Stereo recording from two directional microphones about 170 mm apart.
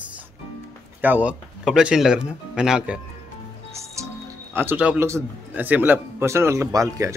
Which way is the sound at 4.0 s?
15° right (ahead or behind).